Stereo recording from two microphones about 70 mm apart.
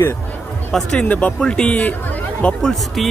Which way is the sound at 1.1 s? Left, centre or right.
Centre.